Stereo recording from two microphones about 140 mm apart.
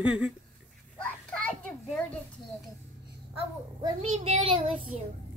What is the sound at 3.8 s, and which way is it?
Speech, 45° right (ahead or behind).